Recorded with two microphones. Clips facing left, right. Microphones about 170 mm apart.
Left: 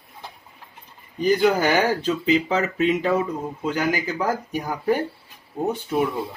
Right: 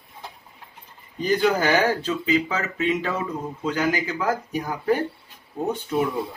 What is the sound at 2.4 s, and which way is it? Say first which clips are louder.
Speech: left 4 dB; 25° left (ahead or behind).